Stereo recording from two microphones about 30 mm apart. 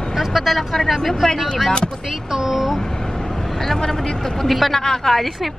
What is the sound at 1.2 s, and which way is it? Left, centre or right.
Speech, centre.